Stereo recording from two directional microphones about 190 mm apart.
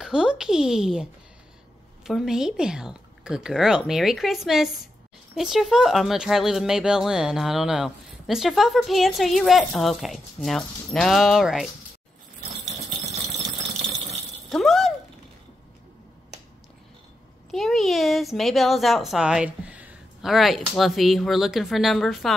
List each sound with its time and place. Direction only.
0.0 s speech: 5° right (ahead or behind)
2.0 s speech: 5° right (ahead or behind)
12.6 s rattle: 35° right (ahead or behind)
14.5 s a sound: centre (ahead or behind)
17.5 s speech: centre (ahead or behind)